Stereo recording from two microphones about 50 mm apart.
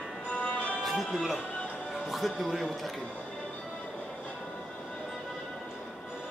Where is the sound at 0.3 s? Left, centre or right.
Left.